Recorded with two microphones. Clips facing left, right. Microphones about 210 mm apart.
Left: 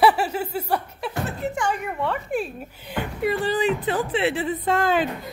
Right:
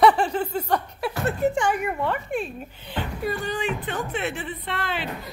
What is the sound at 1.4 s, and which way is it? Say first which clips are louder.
Speech: right 8 dB; 40° right (ahead or behind).